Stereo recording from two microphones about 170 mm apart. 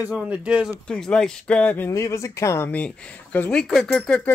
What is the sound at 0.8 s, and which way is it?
Speech, 5° left (ahead or behind).